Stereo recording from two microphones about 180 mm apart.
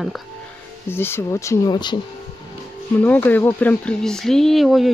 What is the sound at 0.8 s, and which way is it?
Speech, 10° left (ahead or behind).